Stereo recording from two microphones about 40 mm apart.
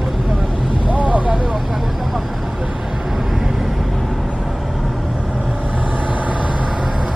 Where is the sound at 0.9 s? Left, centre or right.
Right.